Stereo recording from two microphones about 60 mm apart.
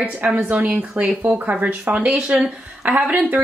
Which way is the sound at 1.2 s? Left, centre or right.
Right.